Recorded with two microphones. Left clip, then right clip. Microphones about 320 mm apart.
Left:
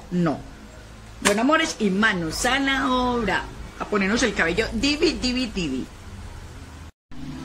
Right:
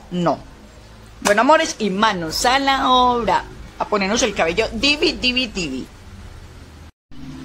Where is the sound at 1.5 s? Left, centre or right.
Centre.